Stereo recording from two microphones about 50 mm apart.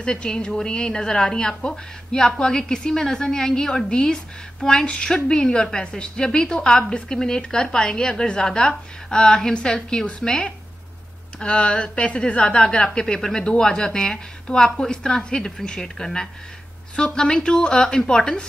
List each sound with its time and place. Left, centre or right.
0.0 s speech: centre